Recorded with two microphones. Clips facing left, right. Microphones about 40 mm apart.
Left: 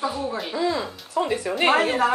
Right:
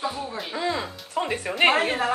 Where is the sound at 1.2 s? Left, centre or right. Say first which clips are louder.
Left 3 dB; right.